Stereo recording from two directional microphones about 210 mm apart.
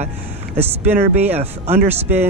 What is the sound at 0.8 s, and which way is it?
Speech, 10° right (ahead or behind).